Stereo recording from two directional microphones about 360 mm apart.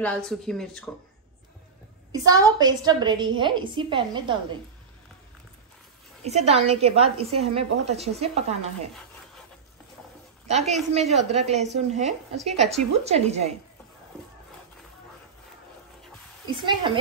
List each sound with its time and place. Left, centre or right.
0.0 s speech: centre
2.2 s a woman's voice: centre
6.2 s a woman's voice: centre
10.9 s a woman's voice: centre
16.4 s a woman's voice: centre